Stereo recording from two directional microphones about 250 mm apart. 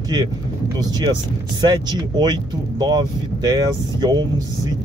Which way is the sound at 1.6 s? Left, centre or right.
Centre.